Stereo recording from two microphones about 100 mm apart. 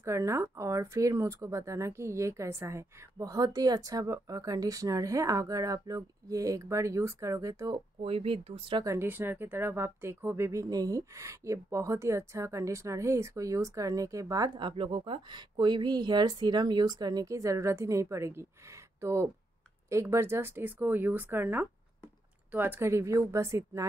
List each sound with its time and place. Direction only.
0.0 s speech: 30° right (ahead or behind)
7.7 s speech: 65° right (ahead or behind)
8.8 s speech: 25° right (ahead or behind)
14.6 s speech: 55° right (ahead or behind); by 23.9 s 30° right (ahead or behind)